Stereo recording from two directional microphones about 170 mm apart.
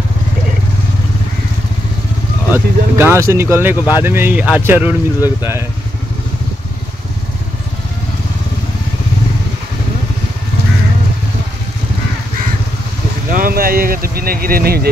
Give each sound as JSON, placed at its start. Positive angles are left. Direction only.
{"t": 2.5, "sound": "speech", "side_deg": -10}
{"t": 13.3, "sound": "vehicle", "side_deg": -60}